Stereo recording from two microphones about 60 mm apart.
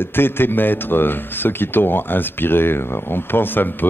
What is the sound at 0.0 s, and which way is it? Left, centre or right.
Speech, left.